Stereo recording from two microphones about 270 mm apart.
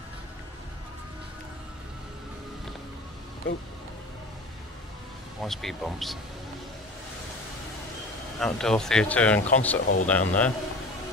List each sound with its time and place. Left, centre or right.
5.4 s speech: centre
8.4 s speech: centre